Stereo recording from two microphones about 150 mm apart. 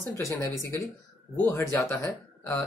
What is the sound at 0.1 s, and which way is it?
Speech, 20° left (ahead or behind).